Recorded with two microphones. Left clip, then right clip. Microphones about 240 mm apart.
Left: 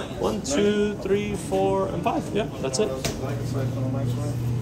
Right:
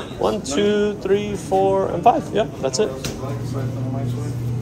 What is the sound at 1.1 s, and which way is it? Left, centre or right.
Speech, right.